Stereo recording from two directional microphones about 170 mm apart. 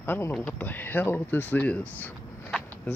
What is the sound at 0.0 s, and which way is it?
Speech, 15° left (ahead or behind).